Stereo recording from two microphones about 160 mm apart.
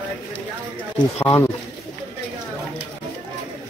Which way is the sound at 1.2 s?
15° left (ahead or behind).